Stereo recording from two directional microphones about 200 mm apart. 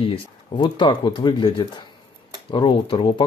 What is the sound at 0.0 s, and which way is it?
Speech, 25° left (ahead or behind).